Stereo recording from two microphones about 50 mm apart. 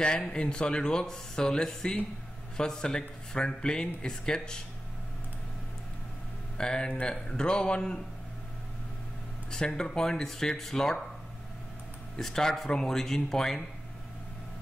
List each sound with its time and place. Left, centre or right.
0.3 s speech: centre
6.6 s speech: centre
9.5 s speech: centre
12.2 s speech: centre